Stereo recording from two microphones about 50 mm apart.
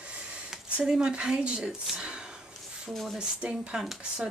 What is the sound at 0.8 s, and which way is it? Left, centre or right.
Speech, centre.